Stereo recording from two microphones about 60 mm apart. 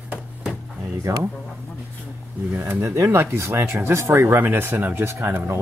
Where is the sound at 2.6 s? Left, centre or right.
Right.